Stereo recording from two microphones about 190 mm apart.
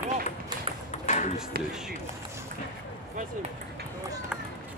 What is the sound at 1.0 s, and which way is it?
Ping, 40° left (ahead or behind).